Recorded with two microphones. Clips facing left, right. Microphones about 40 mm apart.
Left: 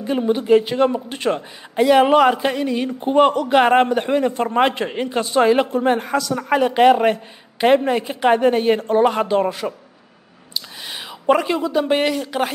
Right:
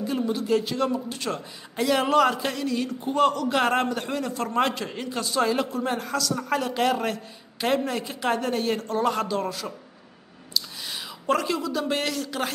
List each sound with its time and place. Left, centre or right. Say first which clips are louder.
0.2 s speech: left 10 dB; left
1.8 s speech: left 8 dB; left
10.6 s whispering: even; left
10.9 s speech: left 8 dB; left